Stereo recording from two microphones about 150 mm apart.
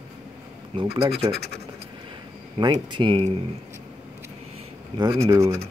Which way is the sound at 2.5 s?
35° right (ahead or behind).